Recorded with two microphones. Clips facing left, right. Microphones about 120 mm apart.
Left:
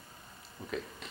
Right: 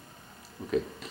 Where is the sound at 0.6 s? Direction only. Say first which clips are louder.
Right 6 dB; 25° right (ahead or behind).